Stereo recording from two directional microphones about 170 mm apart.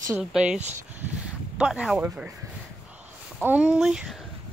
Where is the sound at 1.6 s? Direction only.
5° right (ahead or behind).